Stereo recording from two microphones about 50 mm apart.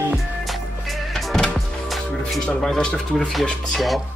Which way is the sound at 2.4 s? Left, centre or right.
Centre.